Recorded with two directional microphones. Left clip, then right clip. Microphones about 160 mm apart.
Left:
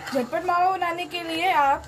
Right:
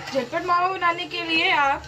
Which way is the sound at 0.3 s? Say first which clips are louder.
Even; 85° left.